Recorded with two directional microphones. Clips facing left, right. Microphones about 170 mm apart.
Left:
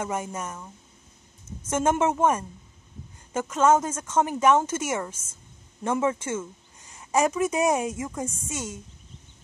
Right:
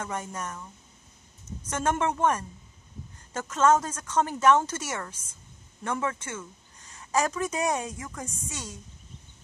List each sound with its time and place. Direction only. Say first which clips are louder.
0.0 s a woman's voice: left 4 dB; 20° left (ahead or behind)
1.7 s a woman's voice: left 4 dB; 20° left (ahead or behind)